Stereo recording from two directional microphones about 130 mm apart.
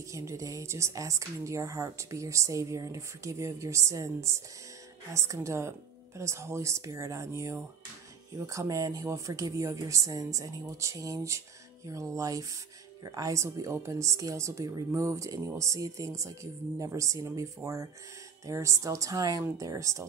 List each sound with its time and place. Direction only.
0.1 s speech: 25° right (ahead or behind)